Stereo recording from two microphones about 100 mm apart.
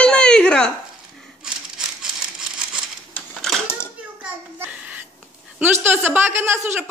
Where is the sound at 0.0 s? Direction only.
10° left (ahead or behind).